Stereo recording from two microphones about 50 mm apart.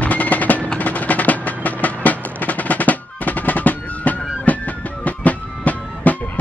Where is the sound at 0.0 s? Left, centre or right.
Left.